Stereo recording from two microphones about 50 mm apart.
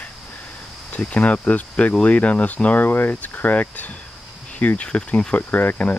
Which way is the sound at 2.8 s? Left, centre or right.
Left.